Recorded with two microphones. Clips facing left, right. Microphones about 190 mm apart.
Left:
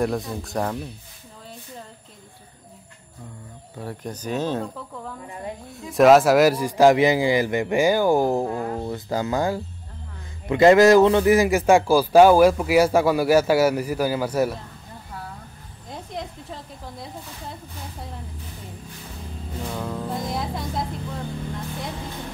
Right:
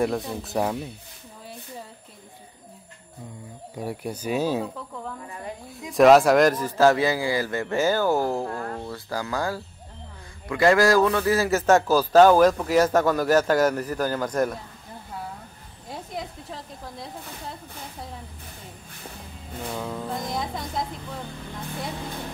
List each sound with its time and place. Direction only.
0.0 s speech: centre (ahead or behind)
3.7 s speech: 10° right (ahead or behind)
5.7 s a man's voice: centre (ahead or behind)
15.9 s a sound: 5° right (ahead or behind)
19.7 s music: centre (ahead or behind)